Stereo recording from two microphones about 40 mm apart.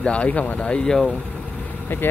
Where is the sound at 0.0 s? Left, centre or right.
Left.